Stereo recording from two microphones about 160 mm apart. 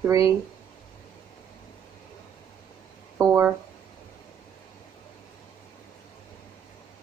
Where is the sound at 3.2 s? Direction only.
5° left (ahead or behind).